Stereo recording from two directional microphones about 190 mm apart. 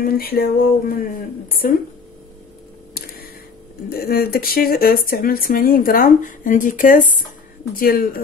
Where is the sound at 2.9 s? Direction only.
55° left (ahead or behind).